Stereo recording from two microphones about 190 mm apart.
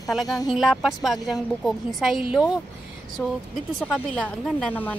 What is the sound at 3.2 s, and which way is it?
A woman's voice, 10° left (ahead or behind).